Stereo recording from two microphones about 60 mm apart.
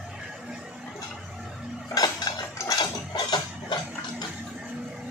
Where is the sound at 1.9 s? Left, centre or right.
Left.